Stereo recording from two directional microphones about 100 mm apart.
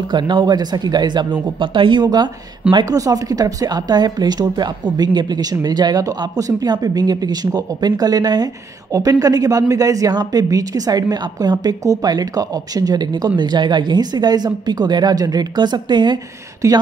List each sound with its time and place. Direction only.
0.1 s speech: 50° right (ahead or behind)
16.6 s speech: 35° right (ahead or behind)